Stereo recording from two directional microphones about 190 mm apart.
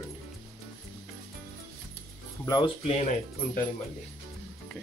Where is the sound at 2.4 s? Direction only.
25° left (ahead or behind).